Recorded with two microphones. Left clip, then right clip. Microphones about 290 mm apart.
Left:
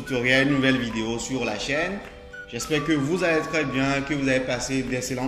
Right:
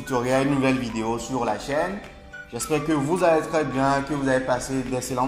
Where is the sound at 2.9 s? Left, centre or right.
Right.